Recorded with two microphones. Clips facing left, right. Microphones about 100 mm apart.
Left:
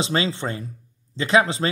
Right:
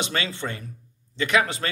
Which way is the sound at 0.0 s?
30° left (ahead or behind).